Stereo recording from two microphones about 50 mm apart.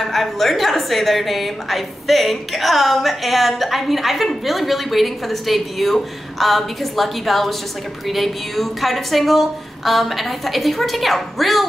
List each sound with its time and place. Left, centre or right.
0.0 s a woman's voice: centre